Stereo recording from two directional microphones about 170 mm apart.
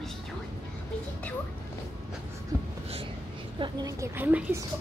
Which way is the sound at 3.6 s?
20° right (ahead or behind).